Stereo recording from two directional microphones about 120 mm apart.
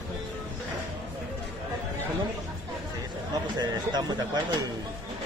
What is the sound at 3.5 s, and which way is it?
Speech, 35° right (ahead or behind).